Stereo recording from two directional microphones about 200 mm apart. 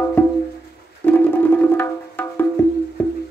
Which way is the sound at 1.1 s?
10° left (ahead or behind).